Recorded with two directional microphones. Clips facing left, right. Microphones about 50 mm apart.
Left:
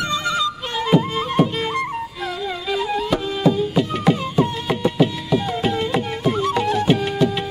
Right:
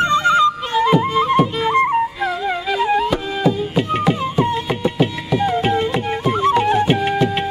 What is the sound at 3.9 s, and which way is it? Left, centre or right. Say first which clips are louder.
Carnatic music: right 2 dB; right.